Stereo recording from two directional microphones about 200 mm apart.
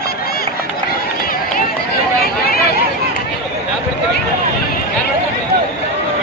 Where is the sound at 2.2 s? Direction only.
50° left (ahead or behind).